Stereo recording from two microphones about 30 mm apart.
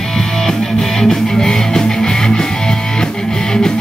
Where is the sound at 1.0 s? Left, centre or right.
Centre.